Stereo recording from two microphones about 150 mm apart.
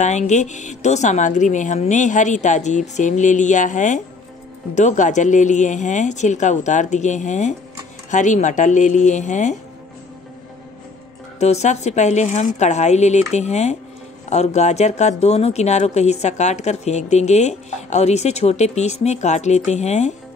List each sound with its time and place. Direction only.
0.0 s a woman's voice: 50° left (ahead or behind)
11.3 s a woman's voice: 45° left (ahead or behind)